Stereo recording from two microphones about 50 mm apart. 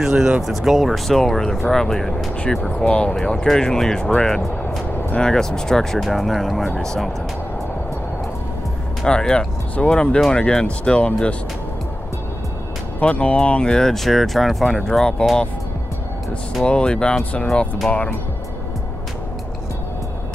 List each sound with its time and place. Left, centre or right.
0.0 s speech: centre
9.0 s speech: centre
13.0 s speech: left; by 15.0 s centre
16.6 s speech: centre